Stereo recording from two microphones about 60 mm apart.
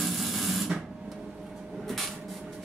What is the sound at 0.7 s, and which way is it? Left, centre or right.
Cupboard open or close, centre.